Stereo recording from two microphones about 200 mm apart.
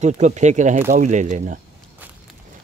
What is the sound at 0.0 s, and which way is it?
Speech, 35° right (ahead or behind).